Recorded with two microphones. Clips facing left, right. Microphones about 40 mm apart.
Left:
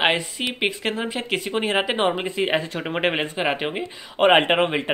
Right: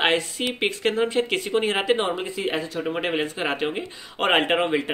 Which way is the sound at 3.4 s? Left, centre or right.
Centre.